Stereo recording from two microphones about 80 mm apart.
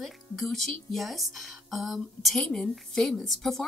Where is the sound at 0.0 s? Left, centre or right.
Centre.